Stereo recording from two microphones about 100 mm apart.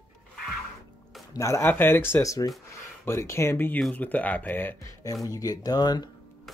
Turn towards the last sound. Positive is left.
turn(degrees=40)  # may be behind; listen again after turning